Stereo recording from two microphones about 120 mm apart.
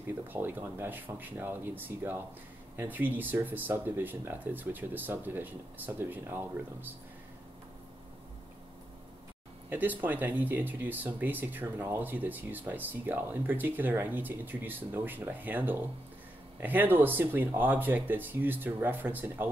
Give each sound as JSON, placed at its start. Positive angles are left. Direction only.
{"t": 0.3, "sound": "speech", "side_deg": -15}
{"t": 9.7, "sound": "speech", "side_deg": -15}